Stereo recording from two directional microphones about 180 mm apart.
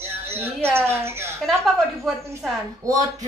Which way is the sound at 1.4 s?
Centre (ahead or behind).